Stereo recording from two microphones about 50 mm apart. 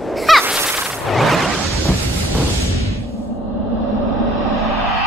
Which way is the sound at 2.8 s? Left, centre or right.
Left.